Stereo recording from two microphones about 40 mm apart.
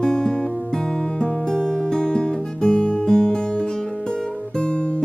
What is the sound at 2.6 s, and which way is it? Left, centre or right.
Guitar, left.